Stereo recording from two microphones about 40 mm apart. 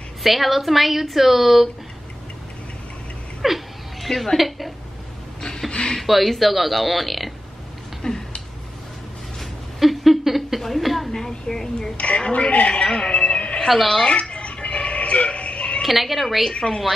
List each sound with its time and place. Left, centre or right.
0.2 s a woman's voice: centre
3.4 s speech: centre
5.7 s speech: left
5.9 s a woman's voice: centre
8.0 s a sound: centre
9.8 s a sound: centre
11.1 s a woman's voice: centre
12.3 s a man's voice: left
13.7 s a woman's voice: centre
14.0 s music: left
15.8 s a woman's voice: centre